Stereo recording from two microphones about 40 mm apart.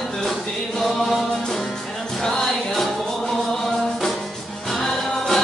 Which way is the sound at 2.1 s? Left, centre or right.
Centre.